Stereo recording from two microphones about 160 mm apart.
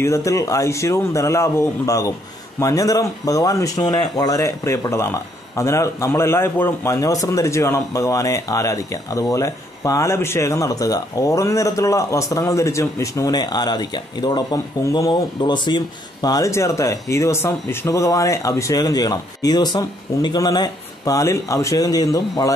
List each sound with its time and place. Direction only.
0.0 s speech: 20° left (ahead or behind)